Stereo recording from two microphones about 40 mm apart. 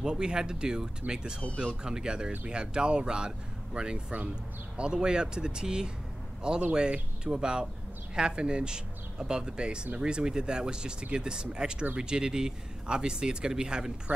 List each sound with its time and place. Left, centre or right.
0.0 s speech: centre